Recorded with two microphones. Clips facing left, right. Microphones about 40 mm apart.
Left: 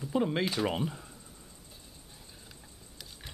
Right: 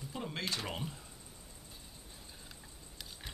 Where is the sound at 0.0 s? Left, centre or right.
Left.